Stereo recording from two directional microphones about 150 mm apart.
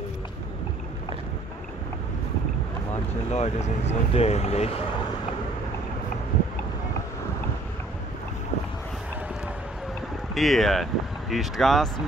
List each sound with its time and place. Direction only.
2.9 s speech: 50° left (ahead or behind)
10.3 s speech: centre (ahead or behind)